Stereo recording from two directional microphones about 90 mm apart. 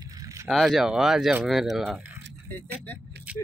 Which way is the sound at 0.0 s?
40° right (ahead or behind).